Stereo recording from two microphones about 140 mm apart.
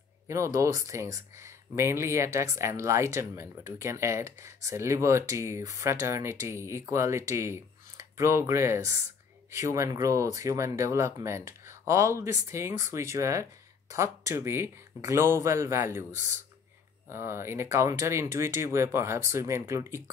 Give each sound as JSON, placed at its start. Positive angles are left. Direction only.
{"t": 0.3, "sound": "speech", "side_deg": -20}
{"t": 17.1, "sound": "speech", "side_deg": -20}